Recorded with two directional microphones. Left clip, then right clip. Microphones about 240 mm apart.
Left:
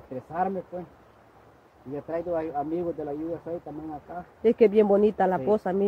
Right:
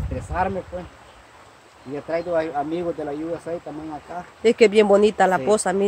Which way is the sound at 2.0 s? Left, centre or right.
Centre.